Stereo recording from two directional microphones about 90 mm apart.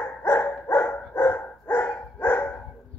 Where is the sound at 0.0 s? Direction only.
25° left (ahead or behind).